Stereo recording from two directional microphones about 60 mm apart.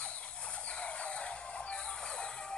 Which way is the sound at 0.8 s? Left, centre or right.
Centre.